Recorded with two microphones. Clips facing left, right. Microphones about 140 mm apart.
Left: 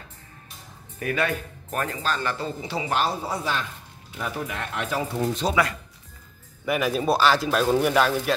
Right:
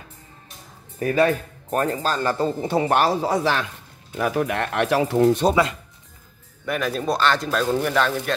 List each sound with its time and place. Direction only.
0.9 s speech: 35° right (ahead or behind); by 3.6 s 85° right
4.2 s speech: 65° right (ahead or behind)
6.6 s speech: 5° left (ahead or behind)